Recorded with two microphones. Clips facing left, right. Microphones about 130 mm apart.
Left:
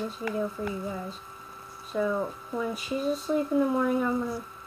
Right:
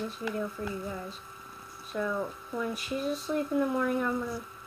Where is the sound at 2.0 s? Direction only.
20° left (ahead or behind).